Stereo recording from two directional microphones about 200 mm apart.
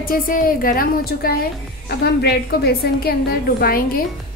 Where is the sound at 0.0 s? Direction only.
45° left (ahead or behind).